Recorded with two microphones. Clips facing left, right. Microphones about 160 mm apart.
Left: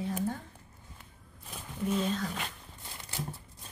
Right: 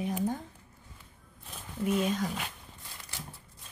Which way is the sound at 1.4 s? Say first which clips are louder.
Right 2 dB; 5° right (ahead or behind).